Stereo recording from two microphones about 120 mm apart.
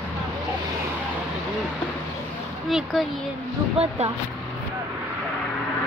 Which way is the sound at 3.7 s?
55° right (ahead or behind).